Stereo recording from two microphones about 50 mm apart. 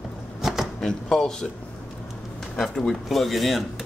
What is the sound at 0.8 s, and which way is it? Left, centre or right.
Speech, centre.